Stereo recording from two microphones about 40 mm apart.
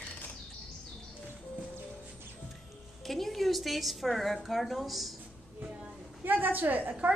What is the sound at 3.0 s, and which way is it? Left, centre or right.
A woman's voice, centre.